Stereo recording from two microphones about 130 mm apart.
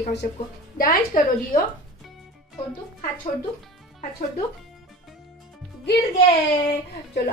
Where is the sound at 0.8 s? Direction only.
90° left.